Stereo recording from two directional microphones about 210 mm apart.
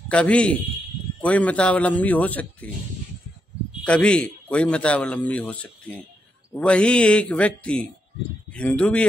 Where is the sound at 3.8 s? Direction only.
5° left (ahead or behind).